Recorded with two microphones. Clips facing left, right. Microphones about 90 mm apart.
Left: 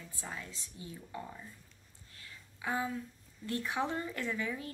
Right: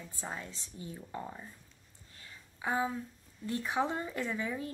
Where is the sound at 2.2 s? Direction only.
25° right (ahead or behind).